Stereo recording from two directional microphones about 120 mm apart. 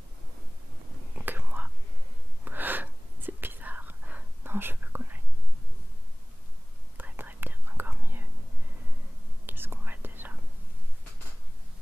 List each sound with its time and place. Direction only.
1.1 s whispering: 15° right (ahead or behind)
7.0 s whispering: 15° right (ahead or behind)
9.5 s whispering: 15° right (ahead or behind)